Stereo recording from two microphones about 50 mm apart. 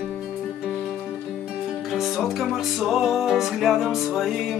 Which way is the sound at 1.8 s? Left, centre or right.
Centre.